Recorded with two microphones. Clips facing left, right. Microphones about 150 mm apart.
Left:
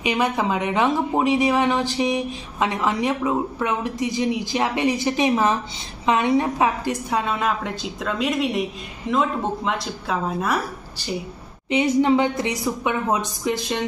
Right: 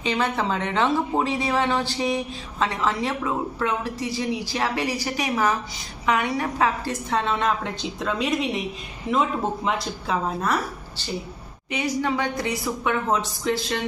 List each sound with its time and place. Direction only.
0.0 s speech: 15° left (ahead or behind)
11.7 s a woman's voice: 25° left (ahead or behind)